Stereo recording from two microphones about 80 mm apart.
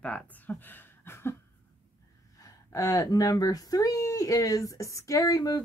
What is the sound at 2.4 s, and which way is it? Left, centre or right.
Speech, left.